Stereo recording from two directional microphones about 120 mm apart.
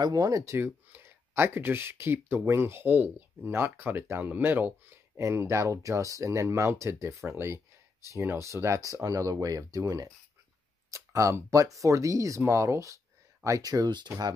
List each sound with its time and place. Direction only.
0.0 s speech: 35° right (ahead or behind)